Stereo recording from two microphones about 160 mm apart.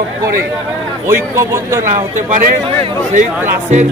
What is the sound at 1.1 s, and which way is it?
Speech, 15° right (ahead or behind).